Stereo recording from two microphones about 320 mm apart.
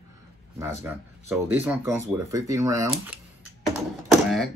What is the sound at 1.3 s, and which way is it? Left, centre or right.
Speech, centre.